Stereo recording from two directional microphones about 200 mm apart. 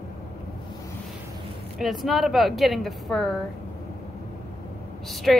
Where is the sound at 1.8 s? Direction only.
Centre (ahead or behind).